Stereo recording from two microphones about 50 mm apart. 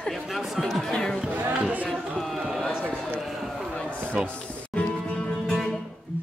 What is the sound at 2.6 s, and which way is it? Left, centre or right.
Run, left.